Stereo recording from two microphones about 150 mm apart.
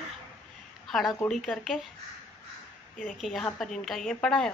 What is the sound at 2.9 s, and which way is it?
A woman's voice, 5° left (ahead or behind).